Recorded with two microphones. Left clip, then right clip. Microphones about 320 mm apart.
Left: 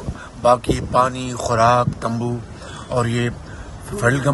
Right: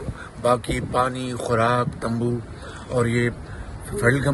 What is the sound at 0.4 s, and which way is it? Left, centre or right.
A man's voice, centre.